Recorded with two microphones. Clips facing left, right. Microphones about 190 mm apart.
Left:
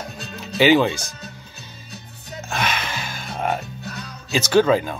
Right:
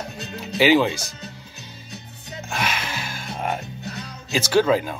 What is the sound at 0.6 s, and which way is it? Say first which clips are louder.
Speech: left 1 dB; 10° right (ahead or behind).